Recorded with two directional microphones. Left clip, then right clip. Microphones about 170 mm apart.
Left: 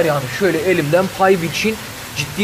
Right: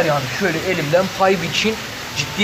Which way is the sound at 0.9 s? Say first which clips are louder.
Even; 55° left (ahead or behind).